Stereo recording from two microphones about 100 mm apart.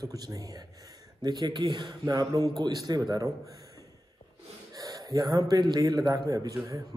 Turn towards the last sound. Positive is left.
turn(degrees=-40)  # may be behind; listen again after turning